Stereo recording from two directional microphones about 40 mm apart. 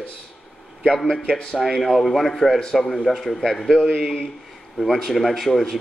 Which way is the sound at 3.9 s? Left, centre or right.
Centre.